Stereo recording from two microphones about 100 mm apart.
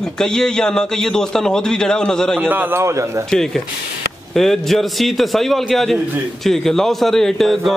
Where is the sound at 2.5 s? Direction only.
20° right (ahead or behind).